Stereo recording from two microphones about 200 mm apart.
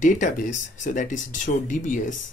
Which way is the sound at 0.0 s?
40° left (ahead or behind).